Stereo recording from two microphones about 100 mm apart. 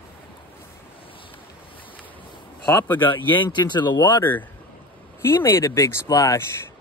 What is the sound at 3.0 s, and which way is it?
Speech, 55° left (ahead or behind).